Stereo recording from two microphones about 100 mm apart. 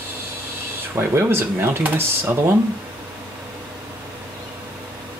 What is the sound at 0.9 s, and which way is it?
Speech, 25° right (ahead or behind).